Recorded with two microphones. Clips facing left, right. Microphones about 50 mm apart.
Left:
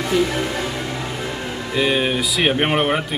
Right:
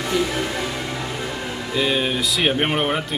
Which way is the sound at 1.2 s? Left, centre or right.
Centre.